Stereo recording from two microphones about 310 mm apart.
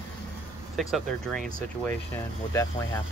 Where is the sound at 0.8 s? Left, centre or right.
Centre.